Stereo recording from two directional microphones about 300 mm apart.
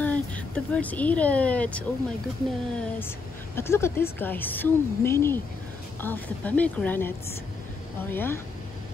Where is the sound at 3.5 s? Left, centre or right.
Centre.